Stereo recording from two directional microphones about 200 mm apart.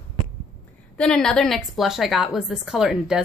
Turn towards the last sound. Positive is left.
turn(degrees=-5)  # may be behind; listen again after turning